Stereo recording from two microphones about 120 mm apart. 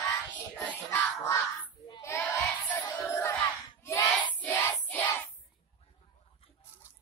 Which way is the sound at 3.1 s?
25° left (ahead or behind).